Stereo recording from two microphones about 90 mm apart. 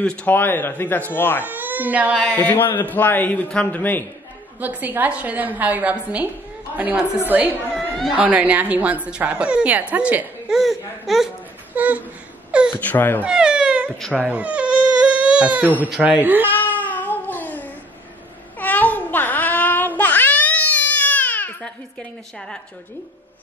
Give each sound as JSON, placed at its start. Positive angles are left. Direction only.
{"t": 0.0, "sound": "speech", "side_deg": 10}
{"t": 0.3, "sound": "a man's voice", "side_deg": 25}
{"t": 1.4, "sound": "speech", "side_deg": -20}
{"t": 2.4, "sound": "a man's voice", "side_deg": 20}
{"t": 4.6, "sound": "a woman's voice", "side_deg": -20}
{"t": 7.2, "sound": "a woman's voice", "side_deg": -20}
{"t": 10.5, "sound": "speech", "side_deg": 0}
{"t": 11.7, "sound": "speech", "side_deg": -15}
{"t": 12.4, "sound": "wail", "side_deg": -10}
{"t": 12.7, "sound": "a man's voice", "side_deg": 20}
{"t": 13.2, "sound": "a sound", "side_deg": -10}
{"t": 14.1, "sound": "baby cry", "side_deg": -15}
{"t": 16.0, "sound": "a woman's voice", "side_deg": -15}
{"t": 16.5, "sound": "cat", "side_deg": 20}